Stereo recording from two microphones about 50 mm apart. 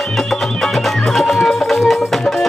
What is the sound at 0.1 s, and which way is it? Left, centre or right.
Music, centre.